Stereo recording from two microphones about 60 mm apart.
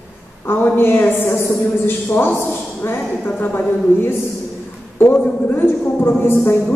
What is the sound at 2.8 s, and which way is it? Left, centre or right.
Speech, left.